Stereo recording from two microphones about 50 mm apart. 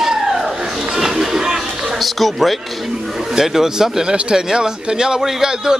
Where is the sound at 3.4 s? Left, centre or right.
Centre.